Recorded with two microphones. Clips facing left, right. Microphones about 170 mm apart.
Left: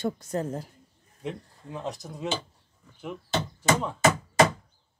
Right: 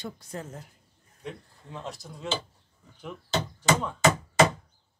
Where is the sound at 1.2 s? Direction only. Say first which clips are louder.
Left 5 dB; 20° left (ahead or behind).